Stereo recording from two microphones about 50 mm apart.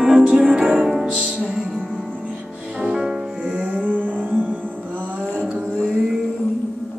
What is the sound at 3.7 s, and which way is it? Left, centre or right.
Music, right.